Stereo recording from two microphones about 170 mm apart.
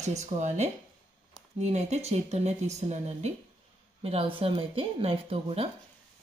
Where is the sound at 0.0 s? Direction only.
40° right (ahead or behind).